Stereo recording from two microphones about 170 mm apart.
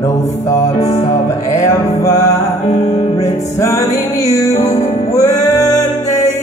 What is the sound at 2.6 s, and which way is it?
Music, 40° left (ahead or behind).